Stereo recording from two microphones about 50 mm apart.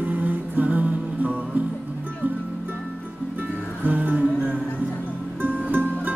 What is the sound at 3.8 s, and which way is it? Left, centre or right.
Music, right.